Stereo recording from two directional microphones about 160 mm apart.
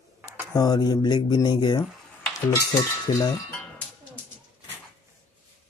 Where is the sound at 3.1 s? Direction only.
25° left (ahead or behind).